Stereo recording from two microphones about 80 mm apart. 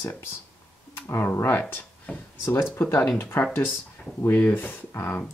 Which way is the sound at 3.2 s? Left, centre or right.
Left.